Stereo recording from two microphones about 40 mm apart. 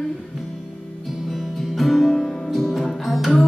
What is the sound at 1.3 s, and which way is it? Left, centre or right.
Music, centre.